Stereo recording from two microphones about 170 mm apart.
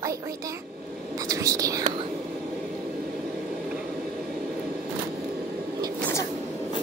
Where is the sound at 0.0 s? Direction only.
20° right (ahead or behind).